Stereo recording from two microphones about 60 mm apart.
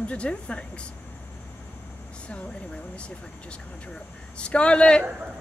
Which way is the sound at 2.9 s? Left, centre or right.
Centre.